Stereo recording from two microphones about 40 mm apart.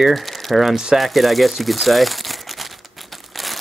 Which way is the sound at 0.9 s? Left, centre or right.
Centre.